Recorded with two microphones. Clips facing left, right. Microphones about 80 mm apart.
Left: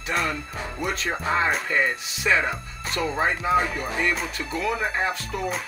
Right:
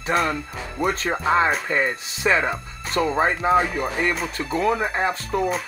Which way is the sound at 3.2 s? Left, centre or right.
Right.